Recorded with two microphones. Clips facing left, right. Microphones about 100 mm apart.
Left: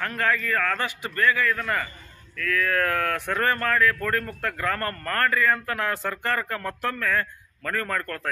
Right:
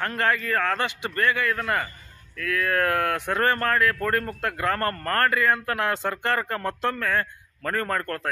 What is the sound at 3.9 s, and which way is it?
Speech, 30° right (ahead or behind).